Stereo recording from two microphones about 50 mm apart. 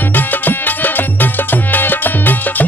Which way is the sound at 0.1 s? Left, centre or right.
Left.